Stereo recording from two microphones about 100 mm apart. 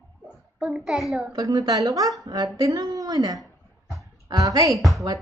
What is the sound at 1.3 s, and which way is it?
Speech, 40° right (ahead or behind).